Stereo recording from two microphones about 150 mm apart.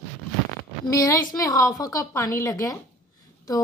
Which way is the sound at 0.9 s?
20° left (ahead or behind).